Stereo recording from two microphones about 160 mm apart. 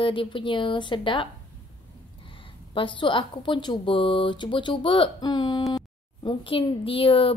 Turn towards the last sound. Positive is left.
turn(degrees=35)  # may be behind; listen again after turning